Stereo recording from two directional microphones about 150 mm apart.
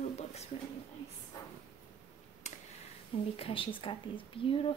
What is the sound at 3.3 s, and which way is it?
A woman's voice, 40° left (ahead or behind).